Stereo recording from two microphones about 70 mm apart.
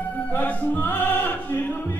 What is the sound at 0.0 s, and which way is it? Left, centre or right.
Music, left.